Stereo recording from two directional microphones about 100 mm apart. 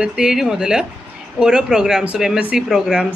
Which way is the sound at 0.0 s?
10° right (ahead or behind).